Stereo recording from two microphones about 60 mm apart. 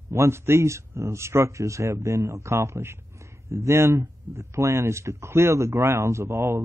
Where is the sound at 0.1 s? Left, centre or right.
Right.